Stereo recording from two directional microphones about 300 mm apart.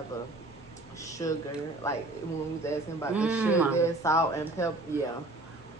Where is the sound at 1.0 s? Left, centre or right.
Centre.